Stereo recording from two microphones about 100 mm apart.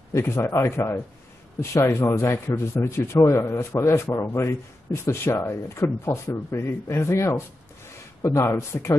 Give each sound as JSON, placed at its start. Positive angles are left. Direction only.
{"t": 0.1, "sound": "a man's voice", "side_deg": 25}